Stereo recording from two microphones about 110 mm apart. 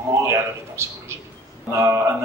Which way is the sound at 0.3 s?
25° right (ahead or behind).